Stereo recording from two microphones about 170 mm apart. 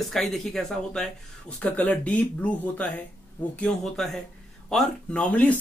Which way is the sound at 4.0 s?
Centre (ahead or behind).